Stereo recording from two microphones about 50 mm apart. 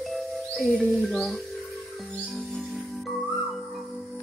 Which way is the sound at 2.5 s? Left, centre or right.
Centre.